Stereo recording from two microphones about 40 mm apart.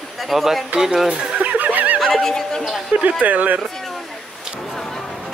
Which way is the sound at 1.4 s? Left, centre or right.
Right.